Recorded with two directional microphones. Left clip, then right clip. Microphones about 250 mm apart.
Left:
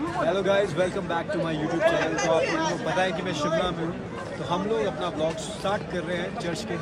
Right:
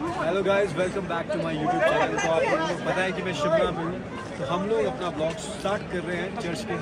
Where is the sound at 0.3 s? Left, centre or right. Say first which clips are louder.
Even; centre.